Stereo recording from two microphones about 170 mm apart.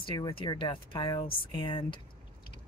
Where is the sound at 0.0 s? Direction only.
25° left (ahead or behind).